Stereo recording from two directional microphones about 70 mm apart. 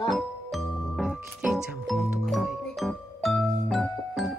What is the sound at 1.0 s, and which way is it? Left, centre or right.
Music, centre.